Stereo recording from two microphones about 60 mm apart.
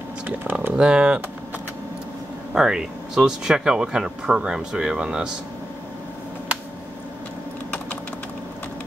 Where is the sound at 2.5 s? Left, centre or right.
Centre.